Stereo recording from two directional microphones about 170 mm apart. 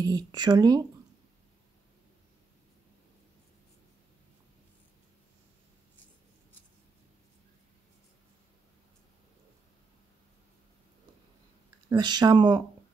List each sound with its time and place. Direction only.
0.0 s speech: 25° right (ahead or behind)
11.9 s speech: 25° right (ahead or behind)